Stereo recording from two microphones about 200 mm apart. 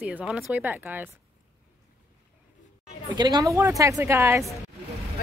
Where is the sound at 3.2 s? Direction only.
20° right (ahead or behind).